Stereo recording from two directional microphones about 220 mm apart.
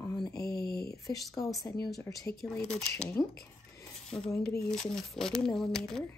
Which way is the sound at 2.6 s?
30° left (ahead or behind).